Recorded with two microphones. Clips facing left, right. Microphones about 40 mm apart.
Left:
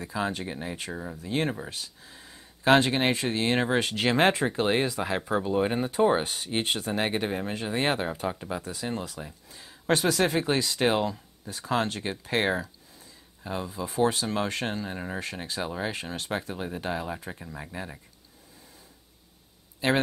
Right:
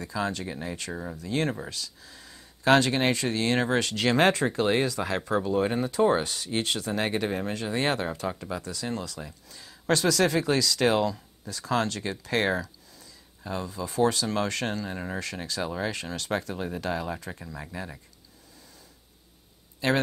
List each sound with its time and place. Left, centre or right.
0.0 s speech: centre